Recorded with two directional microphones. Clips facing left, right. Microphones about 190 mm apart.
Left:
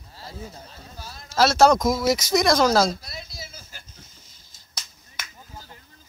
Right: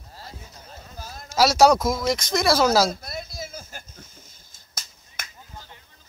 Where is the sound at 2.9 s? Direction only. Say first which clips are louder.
Right 2 dB; 50° right (ahead or behind).